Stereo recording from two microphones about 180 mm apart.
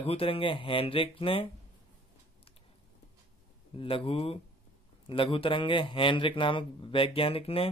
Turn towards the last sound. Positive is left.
turn(degrees=30)  # may be behind; listen again after turning